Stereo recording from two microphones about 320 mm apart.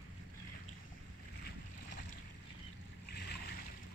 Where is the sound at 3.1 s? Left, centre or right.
Left.